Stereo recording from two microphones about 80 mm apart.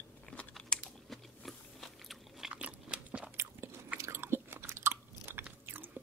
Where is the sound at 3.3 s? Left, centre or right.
Right.